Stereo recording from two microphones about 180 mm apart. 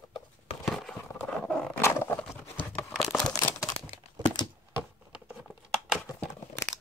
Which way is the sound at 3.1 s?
10° left (ahead or behind).